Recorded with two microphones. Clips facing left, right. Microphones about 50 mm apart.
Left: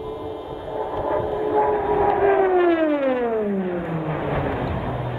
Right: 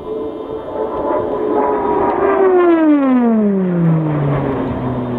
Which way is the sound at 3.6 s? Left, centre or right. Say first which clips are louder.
Right 9 dB; centre.